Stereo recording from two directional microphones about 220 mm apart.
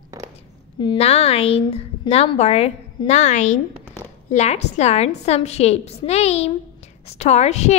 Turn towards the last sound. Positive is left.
turn(degrees=30)  # may be behind; listen again after turning